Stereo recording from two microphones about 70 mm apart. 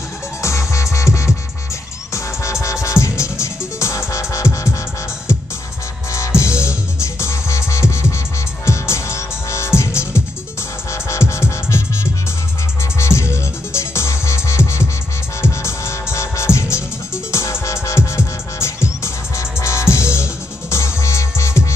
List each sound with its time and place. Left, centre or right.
0.4 s music: left
6.4 s music: left